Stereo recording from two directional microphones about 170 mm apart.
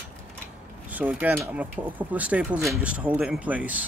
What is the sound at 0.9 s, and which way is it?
Speech, 10° right (ahead or behind).